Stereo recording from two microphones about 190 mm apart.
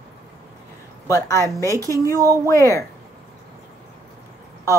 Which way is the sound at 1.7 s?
15° right (ahead or behind).